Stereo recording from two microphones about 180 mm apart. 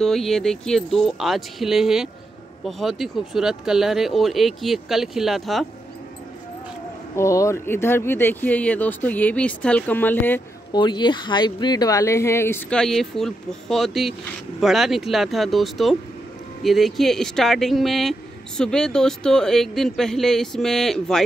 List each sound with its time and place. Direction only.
0.0 s speech: centre (ahead or behind)
7.2 s speech: 15° left (ahead or behind)
10.7 s speech: 25° left (ahead or behind); by 21.2 s centre (ahead or behind)